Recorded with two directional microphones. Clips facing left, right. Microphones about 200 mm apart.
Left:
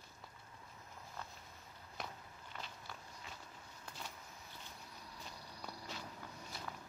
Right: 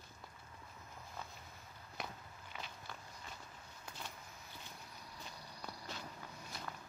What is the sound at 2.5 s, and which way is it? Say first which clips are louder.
Walk: right 1 dB; 5° right (ahead or behind).